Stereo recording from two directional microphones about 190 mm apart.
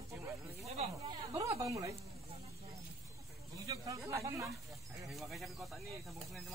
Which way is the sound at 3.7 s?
15° right (ahead or behind).